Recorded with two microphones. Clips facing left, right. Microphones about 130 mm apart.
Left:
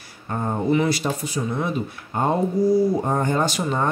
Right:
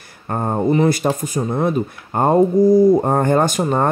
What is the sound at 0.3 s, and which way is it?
Speech, 45° right (ahead or behind).